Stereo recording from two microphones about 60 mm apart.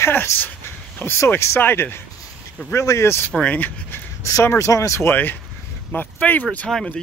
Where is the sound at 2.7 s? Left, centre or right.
Left.